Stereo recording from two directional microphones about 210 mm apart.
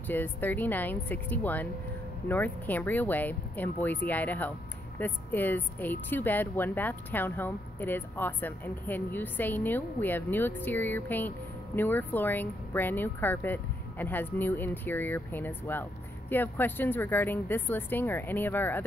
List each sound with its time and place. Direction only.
0.0 s speech: 10° left (ahead or behind)